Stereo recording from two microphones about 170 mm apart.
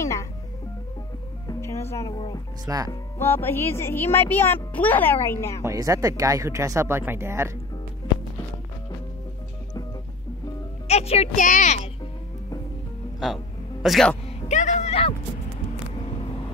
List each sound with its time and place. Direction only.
0.0 s music: 20° left (ahead or behind)
1.5 s music: 15° left (ahead or behind)
2.1 s music: 25° left (ahead or behind)
2.6 s speech: 20° right (ahead or behind)
2.9 s speech: 15° left (ahead or behind)
5.6 s speech: 20° right (ahead or behind)
10.9 s a woman's voice: 40° left (ahead or behind)
13.8 s speech: centre (ahead or behind)
14.5 s speech: 45° left (ahead or behind)